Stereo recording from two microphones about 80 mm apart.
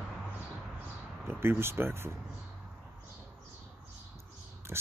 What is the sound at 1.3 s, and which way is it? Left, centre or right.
Speech, right.